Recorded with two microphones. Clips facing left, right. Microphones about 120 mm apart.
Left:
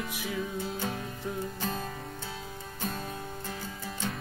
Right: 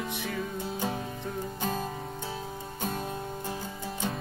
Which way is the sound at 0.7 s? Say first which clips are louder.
Right 2 dB; 15° right (ahead or behind).